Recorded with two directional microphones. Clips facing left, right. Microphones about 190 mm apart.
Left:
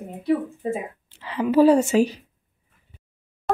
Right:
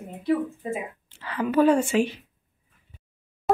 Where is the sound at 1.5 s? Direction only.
35° left (ahead or behind).